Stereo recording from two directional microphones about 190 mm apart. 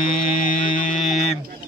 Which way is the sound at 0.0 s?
30° left (ahead or behind).